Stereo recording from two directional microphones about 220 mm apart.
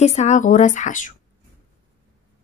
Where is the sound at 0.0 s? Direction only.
30° left (ahead or behind).